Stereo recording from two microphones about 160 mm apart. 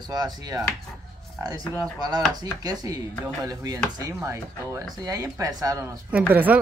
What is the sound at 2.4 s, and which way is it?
Speech, 25° right (ahead or behind).